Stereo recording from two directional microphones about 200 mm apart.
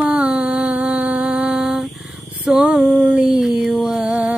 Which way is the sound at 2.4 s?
5° right (ahead or behind).